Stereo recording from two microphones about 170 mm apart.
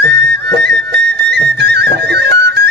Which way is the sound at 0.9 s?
85° right.